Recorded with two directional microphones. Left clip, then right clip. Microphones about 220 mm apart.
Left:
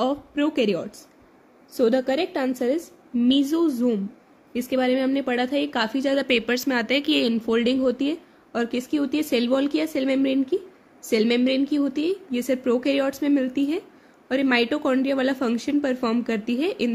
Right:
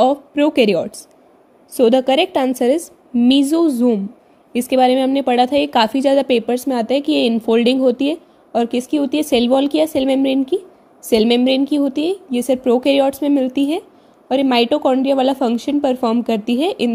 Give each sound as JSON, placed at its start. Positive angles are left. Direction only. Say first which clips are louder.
{"t": 0.0, "sound": "a woman's voice", "louder": "right 10 dB", "side_deg": -20}